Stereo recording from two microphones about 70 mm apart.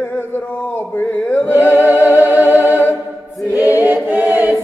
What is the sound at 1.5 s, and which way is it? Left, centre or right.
Singing, right.